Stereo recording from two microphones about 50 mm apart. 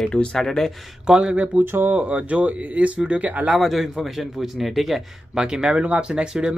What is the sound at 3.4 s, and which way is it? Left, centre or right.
Speech, centre.